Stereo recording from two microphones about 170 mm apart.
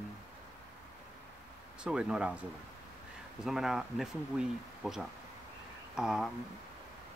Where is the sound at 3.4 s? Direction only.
Centre (ahead or behind).